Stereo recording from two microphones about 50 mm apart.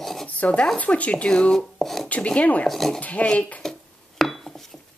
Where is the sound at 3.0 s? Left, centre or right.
Left.